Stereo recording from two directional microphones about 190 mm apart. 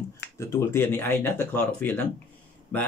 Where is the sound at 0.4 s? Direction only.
15° left (ahead or behind).